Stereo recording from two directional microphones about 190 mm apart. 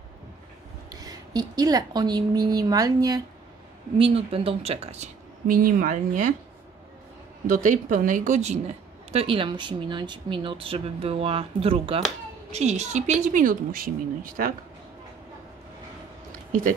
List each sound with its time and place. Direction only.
0.8 s speech: 20° right (ahead or behind)
4.0 s speech: 30° right (ahead or behind)
7.4 s a woman's voice: 45° right (ahead or behind)